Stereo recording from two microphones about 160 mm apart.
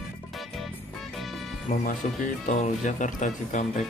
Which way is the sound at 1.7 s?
50° left (ahead or behind).